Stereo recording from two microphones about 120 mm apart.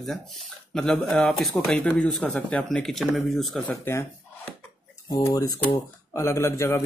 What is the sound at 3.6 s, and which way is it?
Speech, 20° left (ahead or behind).